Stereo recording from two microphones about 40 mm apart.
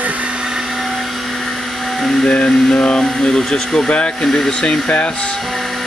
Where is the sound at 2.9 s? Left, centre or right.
Left.